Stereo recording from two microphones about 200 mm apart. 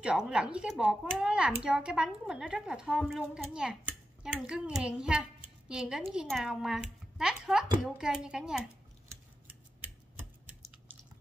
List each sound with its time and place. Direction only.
0.0 s a child's voice: 5° right (ahead or behind)